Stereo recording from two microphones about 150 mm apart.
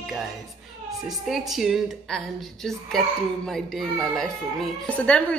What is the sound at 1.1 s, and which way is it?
A woman's voice, centre (ahead or behind).